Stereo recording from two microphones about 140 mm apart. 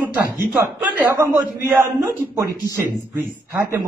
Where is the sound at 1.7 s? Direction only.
15° right (ahead or behind).